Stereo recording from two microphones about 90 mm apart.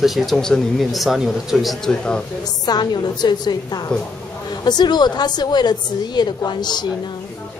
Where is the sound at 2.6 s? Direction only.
50° left (ahead or behind).